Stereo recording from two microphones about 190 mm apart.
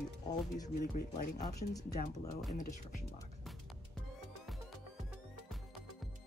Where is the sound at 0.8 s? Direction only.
45° left (ahead or behind).